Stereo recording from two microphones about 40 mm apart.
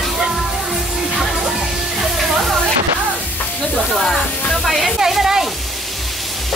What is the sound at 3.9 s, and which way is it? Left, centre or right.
Sizzle, centre.